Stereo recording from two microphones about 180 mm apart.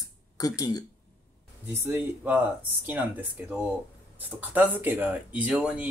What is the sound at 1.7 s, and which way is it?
Speech, 15° right (ahead or behind).